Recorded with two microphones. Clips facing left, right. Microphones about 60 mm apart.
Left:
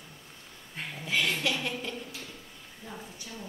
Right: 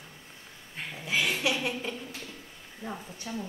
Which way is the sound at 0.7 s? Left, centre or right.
Centre.